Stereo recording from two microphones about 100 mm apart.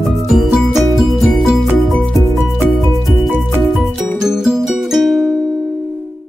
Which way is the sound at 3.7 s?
Centre (ahead or behind).